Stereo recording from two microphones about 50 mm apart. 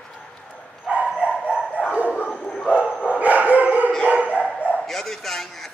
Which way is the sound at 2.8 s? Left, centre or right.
Left.